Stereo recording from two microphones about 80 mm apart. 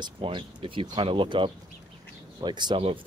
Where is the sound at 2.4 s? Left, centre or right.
Right.